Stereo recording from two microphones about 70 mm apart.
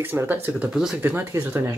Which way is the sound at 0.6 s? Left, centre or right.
Centre.